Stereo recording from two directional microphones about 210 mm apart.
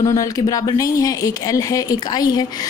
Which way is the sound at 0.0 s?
15° left (ahead or behind).